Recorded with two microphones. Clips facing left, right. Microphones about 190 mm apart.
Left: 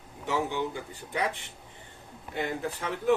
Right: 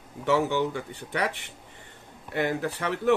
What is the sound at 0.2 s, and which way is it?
Speech, 75° right (ahead or behind).